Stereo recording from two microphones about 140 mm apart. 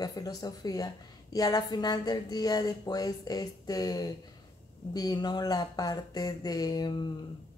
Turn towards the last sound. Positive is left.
turn(degrees=30)  # may be behind; listen again after turning